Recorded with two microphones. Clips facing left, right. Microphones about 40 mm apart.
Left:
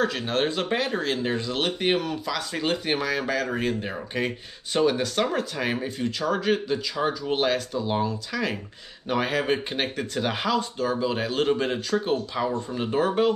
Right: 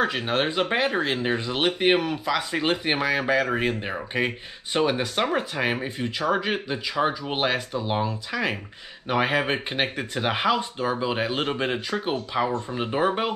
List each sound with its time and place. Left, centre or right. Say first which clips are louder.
0.0 s speech: right 1 dB; right